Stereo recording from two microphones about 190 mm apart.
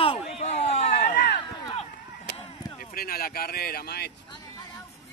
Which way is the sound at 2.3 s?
55° left (ahead or behind).